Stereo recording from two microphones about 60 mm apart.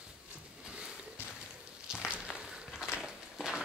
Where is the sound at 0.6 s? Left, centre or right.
Centre.